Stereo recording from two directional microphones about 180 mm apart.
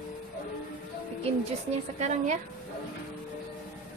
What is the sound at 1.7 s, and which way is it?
Speech, 40° right (ahead or behind).